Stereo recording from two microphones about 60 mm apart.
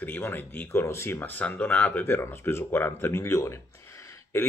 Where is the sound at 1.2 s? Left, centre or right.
Left.